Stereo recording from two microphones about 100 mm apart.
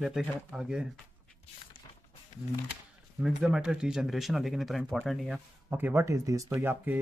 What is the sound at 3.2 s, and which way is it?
Speech, 5° right (ahead or behind).